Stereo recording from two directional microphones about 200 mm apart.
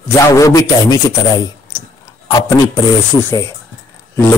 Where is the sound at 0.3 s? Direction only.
15° left (ahead or behind).